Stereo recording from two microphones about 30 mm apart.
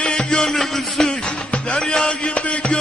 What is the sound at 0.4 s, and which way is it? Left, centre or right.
Music, centre.